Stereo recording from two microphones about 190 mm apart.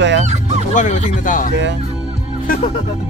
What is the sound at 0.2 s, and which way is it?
Fowl, 35° right (ahead or behind).